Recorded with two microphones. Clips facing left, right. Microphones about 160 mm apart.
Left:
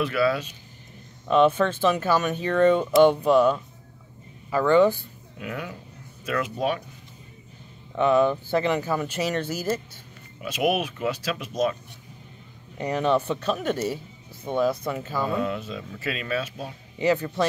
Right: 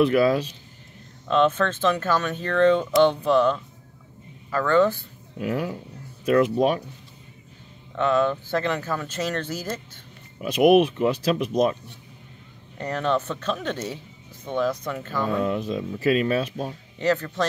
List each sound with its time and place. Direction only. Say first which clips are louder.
0.0 s speech: right 5 dB; 40° right (ahead or behind)
1.2 s speech: left 1 dB; 10° left (ahead or behind)
5.4 s speech: right 7 dB; 35° right (ahead or behind)
7.9 s speech: left 2 dB; 10° left (ahead or behind)
10.4 s speech: right 8 dB; 40° right (ahead or behind)
12.7 s speech: left 2 dB; 10° left (ahead or behind)
15.4 s speech: right 4 dB; 40° right (ahead or behind)
17.0 s speech: left 1 dB; 10° left (ahead or behind)